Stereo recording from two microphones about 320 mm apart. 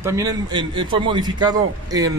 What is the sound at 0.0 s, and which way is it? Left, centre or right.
A man's voice, centre.